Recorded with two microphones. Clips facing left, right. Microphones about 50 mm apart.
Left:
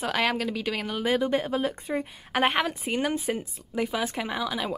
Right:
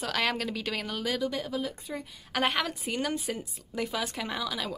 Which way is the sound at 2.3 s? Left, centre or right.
Left.